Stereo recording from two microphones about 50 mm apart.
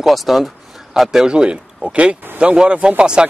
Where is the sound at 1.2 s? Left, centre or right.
Centre.